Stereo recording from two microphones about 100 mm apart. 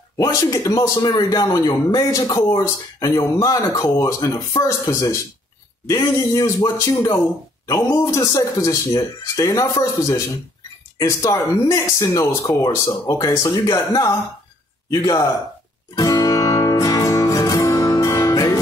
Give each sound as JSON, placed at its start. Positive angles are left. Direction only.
{"t": 0.2, "sound": "speech", "side_deg": 40}
{"t": 8.0, "sound": "speech", "side_deg": 35}
{"t": 15.9, "sound": "music", "side_deg": 35}